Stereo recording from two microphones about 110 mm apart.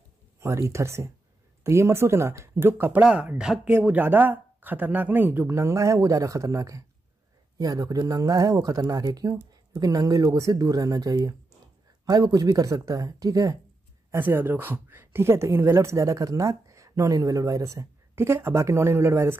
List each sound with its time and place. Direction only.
0.4 s speech: 25° right (ahead or behind)
3.0 s speech: 10° right (ahead or behind); by 13.6 s 35° right (ahead or behind)
14.1 s speech: 20° right (ahead or behind)